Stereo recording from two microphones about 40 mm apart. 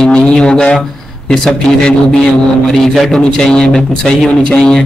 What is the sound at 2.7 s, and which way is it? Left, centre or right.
Speech, centre.